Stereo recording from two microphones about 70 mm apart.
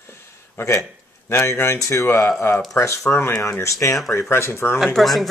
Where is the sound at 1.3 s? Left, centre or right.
Left.